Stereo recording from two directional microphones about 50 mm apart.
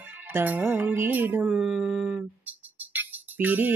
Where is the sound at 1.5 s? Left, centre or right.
Centre.